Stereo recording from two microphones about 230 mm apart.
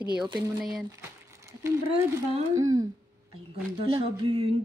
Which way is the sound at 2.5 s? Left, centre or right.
Centre.